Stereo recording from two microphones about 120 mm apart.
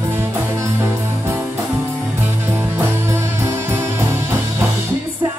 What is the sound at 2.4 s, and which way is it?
Music, 20° right (ahead or behind).